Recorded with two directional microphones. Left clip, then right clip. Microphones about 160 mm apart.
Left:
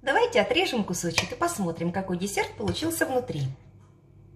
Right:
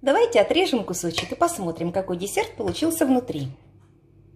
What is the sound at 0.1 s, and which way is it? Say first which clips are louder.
Speech: right 4 dB; 35° right (ahead or behind).